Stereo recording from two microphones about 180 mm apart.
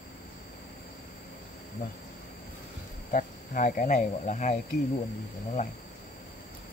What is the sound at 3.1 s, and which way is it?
Speech, 45° left (ahead or behind).